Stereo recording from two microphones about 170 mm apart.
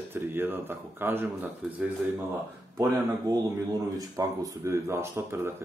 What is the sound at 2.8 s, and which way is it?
Speech, 20° right (ahead or behind).